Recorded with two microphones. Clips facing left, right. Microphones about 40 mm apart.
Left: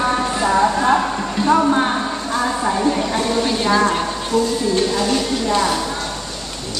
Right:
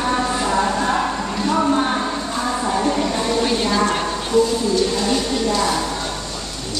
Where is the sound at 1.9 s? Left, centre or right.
Centre.